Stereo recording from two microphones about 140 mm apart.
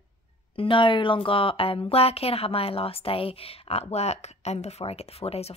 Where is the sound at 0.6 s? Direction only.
35° left (ahead or behind).